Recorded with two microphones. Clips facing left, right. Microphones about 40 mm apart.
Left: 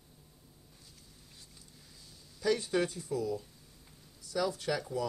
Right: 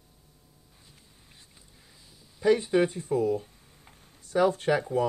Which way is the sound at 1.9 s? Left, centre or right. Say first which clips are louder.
Right 1 dB; right.